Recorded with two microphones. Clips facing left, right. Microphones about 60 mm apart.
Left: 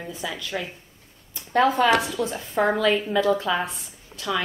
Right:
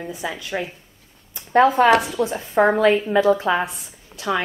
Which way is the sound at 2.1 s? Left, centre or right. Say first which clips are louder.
Right 4 dB; right.